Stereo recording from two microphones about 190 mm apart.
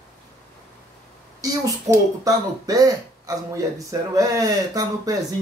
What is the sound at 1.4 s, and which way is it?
Speech, 20° right (ahead or behind).